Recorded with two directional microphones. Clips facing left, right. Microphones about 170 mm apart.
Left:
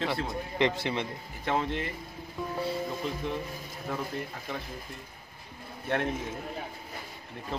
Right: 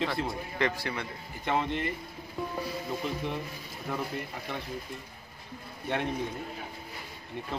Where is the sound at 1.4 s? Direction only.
Centre (ahead or behind).